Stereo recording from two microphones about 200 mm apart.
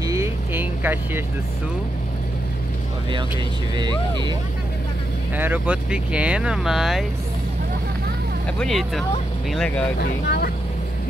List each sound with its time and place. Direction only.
0.0 s vehicle: 15° right (ahead or behind)
3.7 s speech: 20° right (ahead or behind)
5.3 s speech: 10° right (ahead or behind)
8.5 s speech: centre (ahead or behind)
9.9 s speech: 50° left (ahead or behind)